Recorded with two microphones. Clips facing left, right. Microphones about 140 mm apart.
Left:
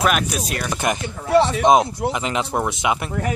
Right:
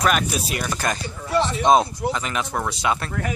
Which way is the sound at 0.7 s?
20° left (ahead or behind).